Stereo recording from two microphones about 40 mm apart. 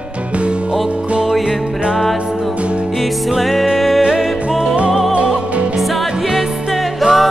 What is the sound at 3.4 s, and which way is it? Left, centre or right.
Music, centre.